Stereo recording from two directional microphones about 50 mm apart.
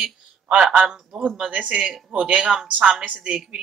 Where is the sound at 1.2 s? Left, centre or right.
Right.